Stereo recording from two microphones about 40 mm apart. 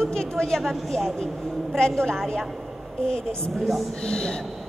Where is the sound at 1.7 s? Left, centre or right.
Centre.